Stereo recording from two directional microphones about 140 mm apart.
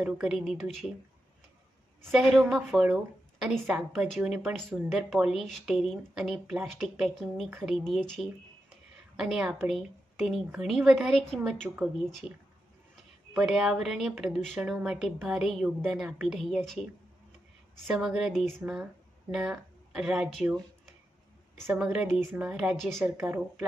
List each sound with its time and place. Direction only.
0.0 s a woman's voice: 5° right (ahead or behind)
2.0 s a woman's voice: centre (ahead or behind)
7.4 s a woman's voice: 10° right (ahead or behind)
7.7 s a woman's voice: centre (ahead or behind)
17.9 s a woman's voice: 5° right (ahead or behind)
21.7 s a woman's voice: 5° right (ahead or behind)
23.1 s a woman's voice: 20° right (ahead or behind)